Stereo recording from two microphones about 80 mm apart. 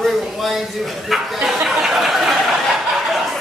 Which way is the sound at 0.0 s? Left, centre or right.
Centre.